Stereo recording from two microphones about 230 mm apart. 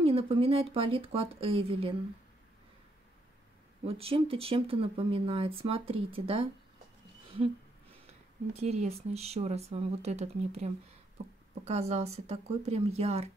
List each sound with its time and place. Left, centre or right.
0.0 s speech: right
3.8 s speech: right
8.5 s speech: right